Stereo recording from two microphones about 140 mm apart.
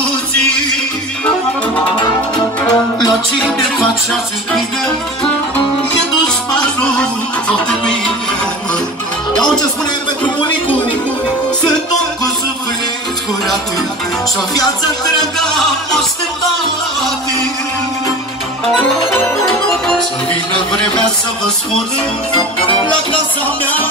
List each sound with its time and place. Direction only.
2.0 s music: 30° left (ahead or behind)
4.1 s music: centre (ahead or behind)
6.8 s music: 5° left (ahead or behind)